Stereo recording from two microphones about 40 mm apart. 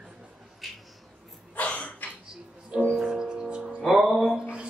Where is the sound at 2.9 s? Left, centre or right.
Centre.